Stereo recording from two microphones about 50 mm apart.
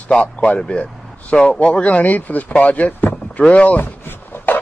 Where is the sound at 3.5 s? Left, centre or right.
Left.